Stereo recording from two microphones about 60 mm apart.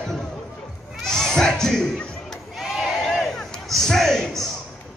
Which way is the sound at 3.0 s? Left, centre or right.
Centre.